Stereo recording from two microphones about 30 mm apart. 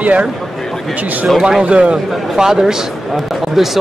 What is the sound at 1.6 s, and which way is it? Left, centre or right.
Speech, right.